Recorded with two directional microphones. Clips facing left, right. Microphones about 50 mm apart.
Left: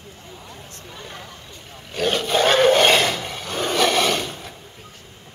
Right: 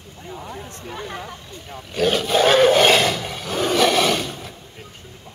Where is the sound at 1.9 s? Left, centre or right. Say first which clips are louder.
Right 2 dB; centre.